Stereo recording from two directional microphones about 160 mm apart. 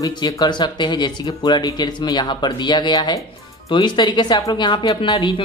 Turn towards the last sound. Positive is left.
turn(degrees=25)  # may be behind; listen again after turning